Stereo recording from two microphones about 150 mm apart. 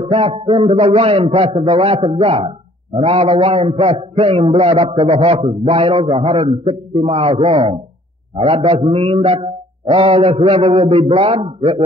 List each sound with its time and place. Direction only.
0.0 s a man's voice: 40° right (ahead or behind)